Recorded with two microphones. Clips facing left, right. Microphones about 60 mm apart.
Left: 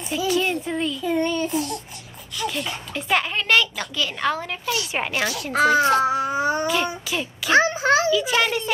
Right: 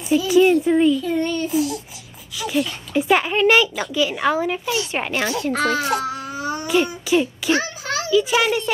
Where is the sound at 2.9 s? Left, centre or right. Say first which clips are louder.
Right 5 dB; centre.